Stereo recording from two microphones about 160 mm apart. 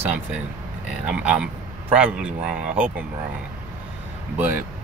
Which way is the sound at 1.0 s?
5° right (ahead or behind).